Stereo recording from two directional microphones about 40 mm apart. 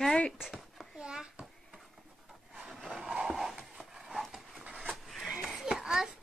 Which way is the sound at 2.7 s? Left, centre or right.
Centre.